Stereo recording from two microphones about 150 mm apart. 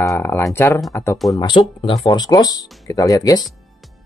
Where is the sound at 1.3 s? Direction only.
30° left (ahead or behind).